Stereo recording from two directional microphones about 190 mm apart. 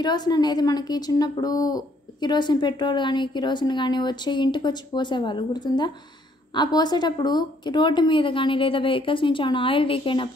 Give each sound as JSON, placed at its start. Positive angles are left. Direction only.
{"t": 0.0, "sound": "a woman's voice", "side_deg": 20}